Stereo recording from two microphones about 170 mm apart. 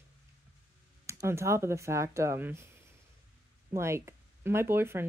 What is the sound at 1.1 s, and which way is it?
Speech, 15° right (ahead or behind).